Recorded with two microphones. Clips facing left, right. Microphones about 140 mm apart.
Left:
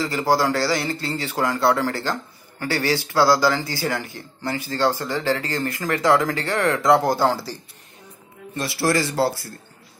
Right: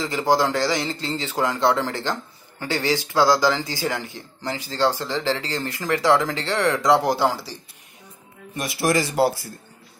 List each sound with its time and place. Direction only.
0.0 s a man's voice: 15° right (ahead or behind)
8.5 s a man's voice: 15° right (ahead or behind)